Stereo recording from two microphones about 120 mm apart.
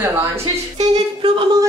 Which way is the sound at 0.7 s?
65° right (ahead or behind).